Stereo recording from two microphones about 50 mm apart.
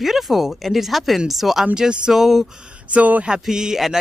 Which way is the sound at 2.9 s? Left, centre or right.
Right.